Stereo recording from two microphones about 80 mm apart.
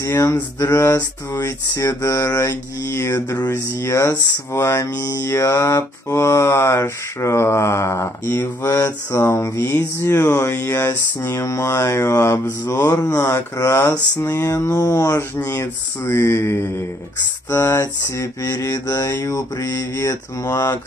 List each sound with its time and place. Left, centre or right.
0.0 s speech: left
1.3 s speech: left
12.6 s mantra: left
13.0 s speech: left
15.3 s speech: left
17.5 s speech: left
18.9 s mantra: left